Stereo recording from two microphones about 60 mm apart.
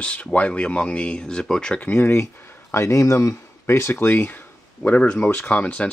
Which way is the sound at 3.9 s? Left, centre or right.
Left.